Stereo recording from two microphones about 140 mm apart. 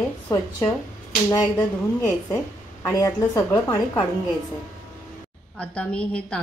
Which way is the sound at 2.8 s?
20° left (ahead or behind).